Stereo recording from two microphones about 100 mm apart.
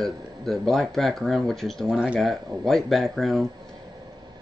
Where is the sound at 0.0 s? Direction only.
5° left (ahead or behind).